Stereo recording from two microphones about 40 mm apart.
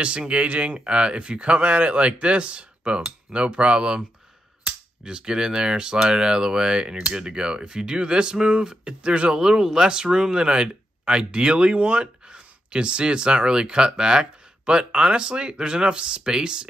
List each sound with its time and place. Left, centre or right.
0.0 s speech: right